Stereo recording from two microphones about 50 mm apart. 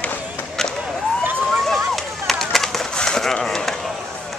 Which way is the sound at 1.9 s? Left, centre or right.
Centre.